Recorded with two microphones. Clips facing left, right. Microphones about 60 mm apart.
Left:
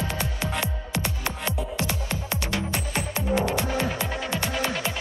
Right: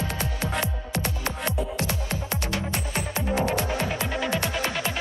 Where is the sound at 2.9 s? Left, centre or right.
Right.